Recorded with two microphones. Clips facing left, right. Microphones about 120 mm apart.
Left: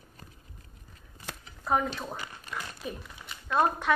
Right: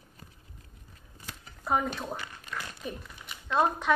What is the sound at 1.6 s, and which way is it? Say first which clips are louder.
Speech: left 1 dB; centre (ahead or behind).